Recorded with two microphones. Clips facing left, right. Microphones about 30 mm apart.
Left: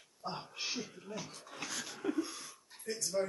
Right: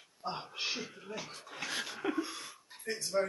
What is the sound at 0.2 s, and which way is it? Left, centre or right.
Speech, right.